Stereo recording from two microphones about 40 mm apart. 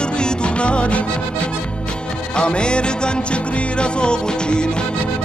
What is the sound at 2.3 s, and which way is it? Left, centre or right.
Music, left.